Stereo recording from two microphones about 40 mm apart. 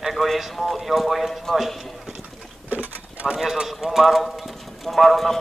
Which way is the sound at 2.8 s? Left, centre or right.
Right.